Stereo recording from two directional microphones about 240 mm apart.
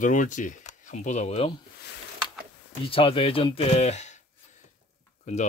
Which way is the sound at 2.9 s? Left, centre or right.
Left.